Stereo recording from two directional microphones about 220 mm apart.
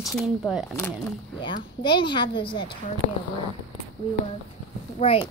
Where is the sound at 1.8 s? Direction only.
20° left (ahead or behind).